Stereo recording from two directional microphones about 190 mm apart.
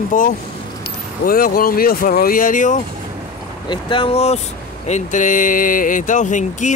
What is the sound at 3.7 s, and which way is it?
Speech, 25° left (ahead or behind).